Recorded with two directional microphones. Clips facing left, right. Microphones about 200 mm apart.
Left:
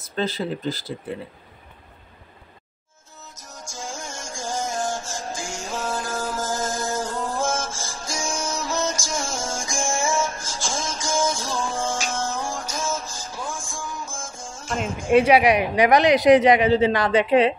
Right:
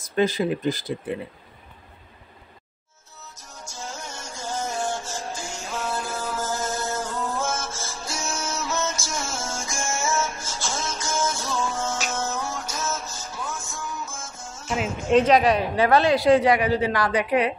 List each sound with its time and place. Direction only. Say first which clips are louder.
0.1 s speech: right 4 dB; 15° right (ahead or behind)
3.2 s music: left 2 dB; 10° left (ahead or behind)
15.0 s a woman's voice: left 2 dB; 10° left (ahead or behind)